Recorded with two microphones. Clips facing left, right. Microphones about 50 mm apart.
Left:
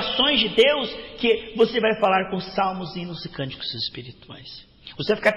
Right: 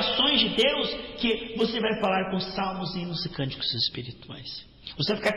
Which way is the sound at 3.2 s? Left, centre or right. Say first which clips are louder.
Left 1 dB; centre.